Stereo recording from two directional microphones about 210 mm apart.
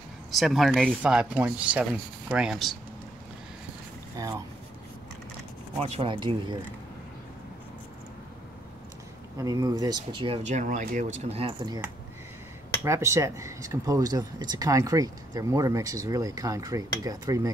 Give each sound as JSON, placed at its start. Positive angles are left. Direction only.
{"t": 0.3, "sound": "speech", "side_deg": 0}
{"t": 4.2, "sound": "speech", "side_deg": -15}
{"t": 5.8, "sound": "speech", "side_deg": -25}
{"t": 9.4, "sound": "speech", "side_deg": -15}
{"t": 11.2, "sound": "speech", "side_deg": -25}